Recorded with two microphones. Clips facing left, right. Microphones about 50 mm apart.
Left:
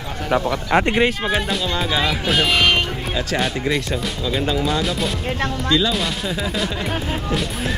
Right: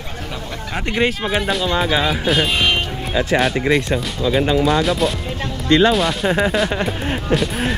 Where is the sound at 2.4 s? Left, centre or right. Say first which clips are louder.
Left 1 dB; left.